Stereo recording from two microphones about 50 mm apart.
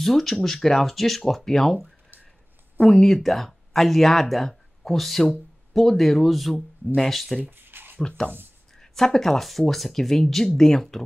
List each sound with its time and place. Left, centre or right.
0.0 s speech: centre
7.4 s a sound: right
8.2 s speech: centre